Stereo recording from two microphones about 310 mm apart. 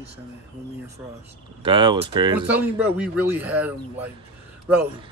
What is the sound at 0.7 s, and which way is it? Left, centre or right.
Speech, centre.